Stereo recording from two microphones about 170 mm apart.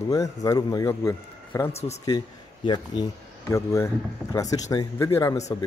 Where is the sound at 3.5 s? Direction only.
15° left (ahead or behind).